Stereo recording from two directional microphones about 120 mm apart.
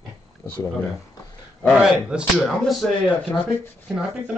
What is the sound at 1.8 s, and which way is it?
Speech, 5° right (ahead or behind).